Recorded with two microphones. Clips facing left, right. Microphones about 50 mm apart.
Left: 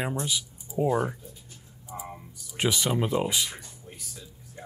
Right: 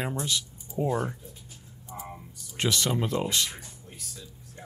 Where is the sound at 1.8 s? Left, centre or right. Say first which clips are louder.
Left 1 dB; centre.